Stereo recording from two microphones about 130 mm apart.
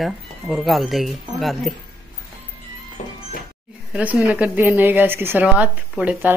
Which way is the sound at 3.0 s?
65° left (ahead or behind).